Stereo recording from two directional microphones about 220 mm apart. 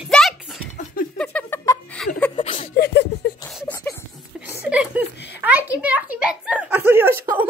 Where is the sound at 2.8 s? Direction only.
50° left (ahead or behind).